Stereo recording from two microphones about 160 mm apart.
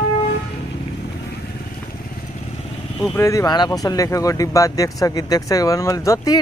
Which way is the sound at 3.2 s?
20° left (ahead or behind).